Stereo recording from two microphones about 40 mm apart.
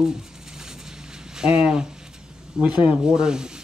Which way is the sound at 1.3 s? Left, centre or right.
Right.